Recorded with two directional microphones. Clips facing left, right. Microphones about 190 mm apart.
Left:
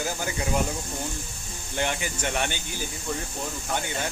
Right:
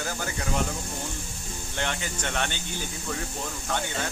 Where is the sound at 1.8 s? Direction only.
10° left (ahead or behind).